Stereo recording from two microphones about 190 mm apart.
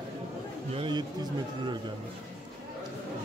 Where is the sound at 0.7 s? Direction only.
25° right (ahead or behind).